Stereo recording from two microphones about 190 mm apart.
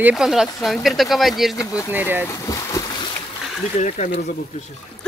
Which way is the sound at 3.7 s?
35° left (ahead or behind).